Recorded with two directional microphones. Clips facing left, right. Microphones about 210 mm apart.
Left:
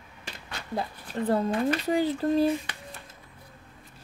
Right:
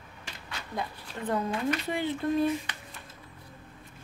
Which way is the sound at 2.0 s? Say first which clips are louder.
Left 3 dB; 35° left (ahead or behind).